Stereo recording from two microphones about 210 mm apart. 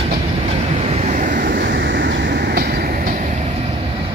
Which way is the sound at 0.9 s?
35° right (ahead or behind).